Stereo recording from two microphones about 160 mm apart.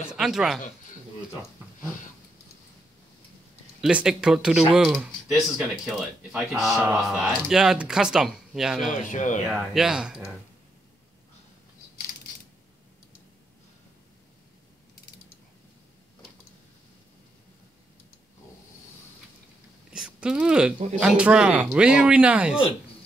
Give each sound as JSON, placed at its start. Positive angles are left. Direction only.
{"t": 0.1, "sound": "speech", "side_deg": -5}
{"t": 3.8, "sound": "speech", "side_deg": -5}
{"t": 8.9, "sound": "speech", "side_deg": 50}
{"t": 9.5, "sound": "speech", "side_deg": -5}
{"t": 19.9, "sound": "a sound", "side_deg": -5}
{"t": 21.0, "sound": "speech", "side_deg": -5}